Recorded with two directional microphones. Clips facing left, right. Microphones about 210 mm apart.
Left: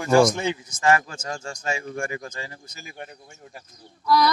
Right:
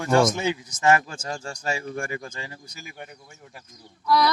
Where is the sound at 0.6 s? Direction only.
20° right (ahead or behind).